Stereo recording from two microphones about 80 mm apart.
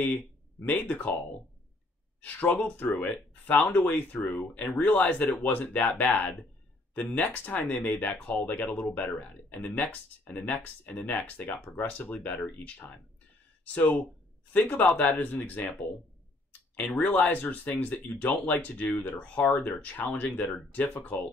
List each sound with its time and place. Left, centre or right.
0.8 s speech: centre
2.2 s speech: centre
17.0 s speech: left